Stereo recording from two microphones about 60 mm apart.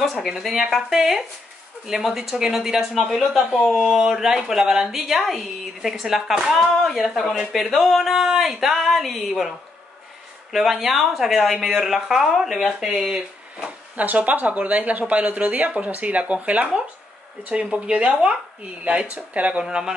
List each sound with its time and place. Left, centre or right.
0.0 s speech: centre
10.5 s speech: centre
13.6 s speech: right
19.6 s speech: centre